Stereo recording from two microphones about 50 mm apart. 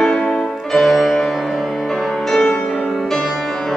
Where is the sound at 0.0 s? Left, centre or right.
Centre.